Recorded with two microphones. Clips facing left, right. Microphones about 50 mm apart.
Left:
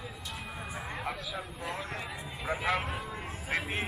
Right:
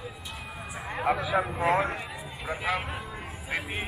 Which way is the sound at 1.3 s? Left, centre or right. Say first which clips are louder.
Right 13 dB; right.